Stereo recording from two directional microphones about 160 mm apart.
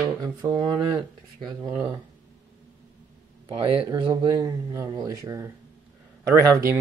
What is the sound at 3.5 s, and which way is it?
Speech, 35° right (ahead or behind).